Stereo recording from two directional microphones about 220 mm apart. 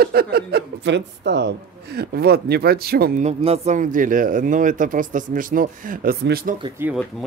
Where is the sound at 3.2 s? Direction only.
30° right (ahead or behind).